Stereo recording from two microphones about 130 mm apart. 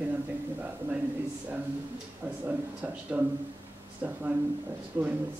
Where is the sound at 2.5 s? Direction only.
10° right (ahead or behind).